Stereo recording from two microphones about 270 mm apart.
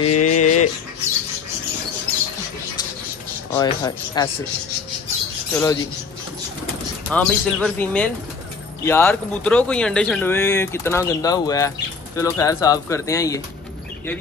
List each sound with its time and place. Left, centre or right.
0.0 s a sound: left
3.5 s speech: centre
5.5 s speech: centre
7.1 s speech: centre